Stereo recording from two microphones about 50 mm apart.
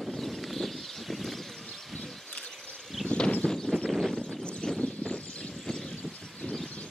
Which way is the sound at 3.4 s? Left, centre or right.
Centre.